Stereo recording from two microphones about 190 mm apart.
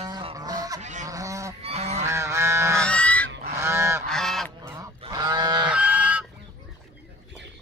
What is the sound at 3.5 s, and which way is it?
Goose, 15° right (ahead or behind).